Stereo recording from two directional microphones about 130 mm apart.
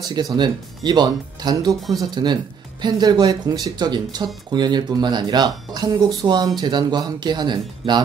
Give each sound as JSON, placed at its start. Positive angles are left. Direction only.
{"t": 0.0, "sound": "speech", "side_deg": -30}